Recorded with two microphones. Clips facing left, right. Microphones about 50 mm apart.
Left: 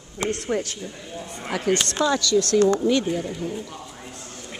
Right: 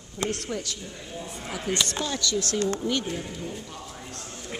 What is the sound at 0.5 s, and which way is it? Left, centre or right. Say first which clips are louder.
Speech: left 7 dB; left.